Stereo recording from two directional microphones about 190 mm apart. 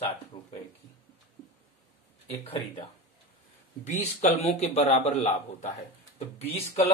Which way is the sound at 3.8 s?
35° left (ahead or behind).